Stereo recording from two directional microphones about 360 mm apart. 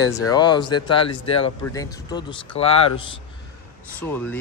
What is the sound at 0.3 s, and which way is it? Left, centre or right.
Speech, centre.